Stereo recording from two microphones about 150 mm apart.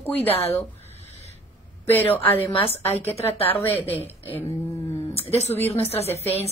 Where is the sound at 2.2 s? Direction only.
35° left (ahead or behind).